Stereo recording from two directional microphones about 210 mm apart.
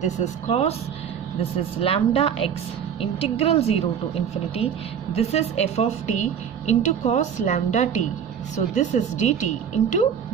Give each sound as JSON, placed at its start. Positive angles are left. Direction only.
{"t": 0.0, "sound": "a woman's voice", "side_deg": 30}
{"t": 5.1, "sound": "a woman's voice", "side_deg": 30}